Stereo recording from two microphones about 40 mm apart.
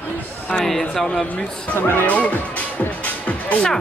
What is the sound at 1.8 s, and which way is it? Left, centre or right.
Speech, left.